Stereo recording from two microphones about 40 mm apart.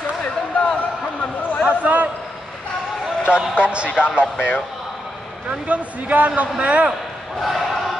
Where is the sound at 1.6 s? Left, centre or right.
Right.